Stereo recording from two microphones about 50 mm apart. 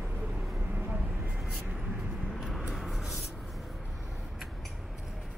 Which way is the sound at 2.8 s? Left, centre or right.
Centre.